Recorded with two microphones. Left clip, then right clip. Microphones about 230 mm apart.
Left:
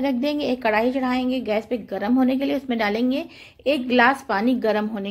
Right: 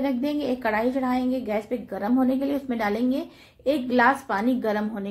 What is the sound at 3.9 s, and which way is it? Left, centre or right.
Speech, left.